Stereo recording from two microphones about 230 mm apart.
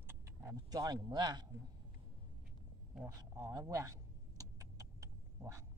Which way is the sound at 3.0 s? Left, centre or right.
Centre.